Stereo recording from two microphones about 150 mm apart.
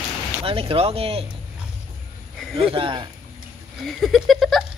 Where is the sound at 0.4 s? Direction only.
40° right (ahead or behind).